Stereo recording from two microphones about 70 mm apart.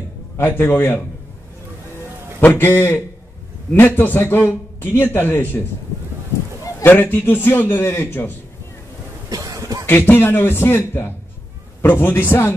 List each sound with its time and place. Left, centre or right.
0.4 s a man's voice: left
2.4 s a man's voice: left
6.8 s a man's voice: left
9.3 s cough: right
9.8 s a man's voice: left